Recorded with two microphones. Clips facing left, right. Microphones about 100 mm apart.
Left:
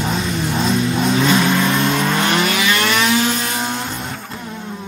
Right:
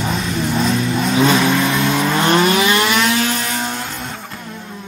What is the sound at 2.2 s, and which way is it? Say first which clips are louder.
Vehicle: right 4 dB; 30° right (ahead or behind).